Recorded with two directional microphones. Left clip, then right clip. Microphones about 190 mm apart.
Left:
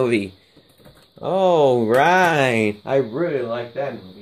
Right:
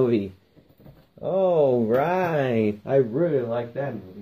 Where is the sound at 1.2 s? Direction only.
55° left (ahead or behind).